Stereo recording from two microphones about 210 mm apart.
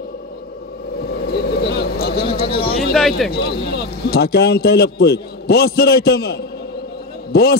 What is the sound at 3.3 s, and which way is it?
A man's voice, 50° left (ahead or behind).